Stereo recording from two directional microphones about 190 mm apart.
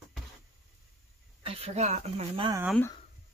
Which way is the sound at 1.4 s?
30° right (ahead or behind).